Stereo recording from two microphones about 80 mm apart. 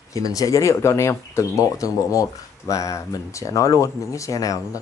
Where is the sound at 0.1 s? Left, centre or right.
Left.